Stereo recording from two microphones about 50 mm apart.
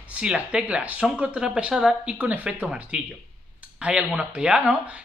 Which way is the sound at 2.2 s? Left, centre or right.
Right.